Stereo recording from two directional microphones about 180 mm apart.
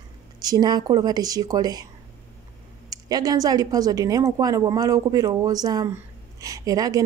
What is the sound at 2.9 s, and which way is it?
A woman's voice, 20° right (ahead or behind).